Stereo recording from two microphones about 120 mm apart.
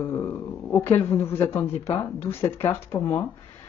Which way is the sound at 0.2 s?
20° left (ahead or behind).